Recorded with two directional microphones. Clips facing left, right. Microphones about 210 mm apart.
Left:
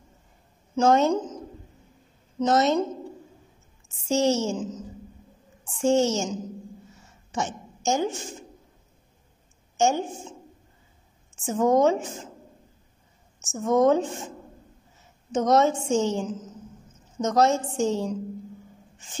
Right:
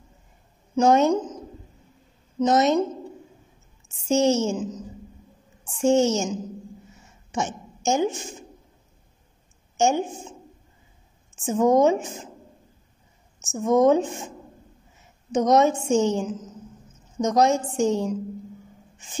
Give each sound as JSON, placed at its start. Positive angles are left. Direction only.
{"t": 0.7, "sound": "a woman's voice", "side_deg": -15}
{"t": 2.4, "sound": "a woman's voice", "side_deg": -15}
{"t": 4.1, "sound": "a woman's voice", "side_deg": -20}
{"t": 5.8, "sound": "a woman's voice", "side_deg": -15}
{"t": 7.3, "sound": "a woman's voice", "side_deg": -15}
{"t": 9.8, "sound": "a woman's voice", "side_deg": -15}
{"t": 11.4, "sound": "a woman's voice", "side_deg": -15}
{"t": 13.4, "sound": "a woman's voice", "side_deg": -15}
{"t": 15.3, "sound": "a woman's voice", "side_deg": -15}